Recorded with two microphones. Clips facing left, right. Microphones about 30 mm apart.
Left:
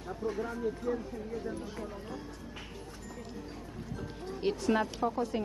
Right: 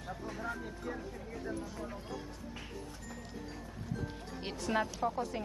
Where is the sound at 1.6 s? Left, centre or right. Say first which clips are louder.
Left 2 dB; left.